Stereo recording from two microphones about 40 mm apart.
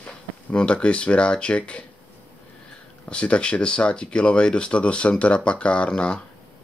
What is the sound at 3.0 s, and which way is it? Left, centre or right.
Speech, left.